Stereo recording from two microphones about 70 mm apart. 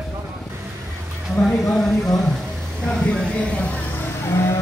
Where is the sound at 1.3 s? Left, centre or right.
Centre.